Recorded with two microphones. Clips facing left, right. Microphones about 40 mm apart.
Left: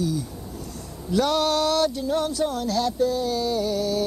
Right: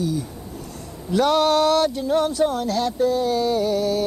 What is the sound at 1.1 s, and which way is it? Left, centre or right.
Speech, right.